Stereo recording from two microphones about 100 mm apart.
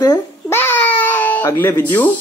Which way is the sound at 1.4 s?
25° left (ahead or behind).